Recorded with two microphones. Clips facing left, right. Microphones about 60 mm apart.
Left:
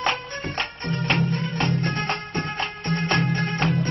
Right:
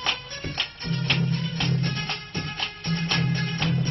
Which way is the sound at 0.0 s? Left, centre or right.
Left.